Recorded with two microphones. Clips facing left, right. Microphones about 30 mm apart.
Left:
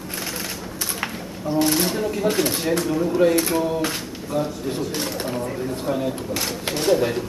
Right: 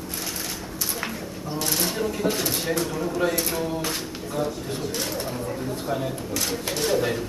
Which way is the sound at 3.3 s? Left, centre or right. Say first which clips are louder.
Left 6 dB; centre.